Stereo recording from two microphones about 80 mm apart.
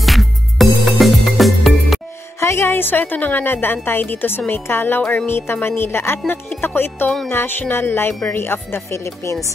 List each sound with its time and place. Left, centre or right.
0.0 s music: centre
2.4 s a woman's voice: left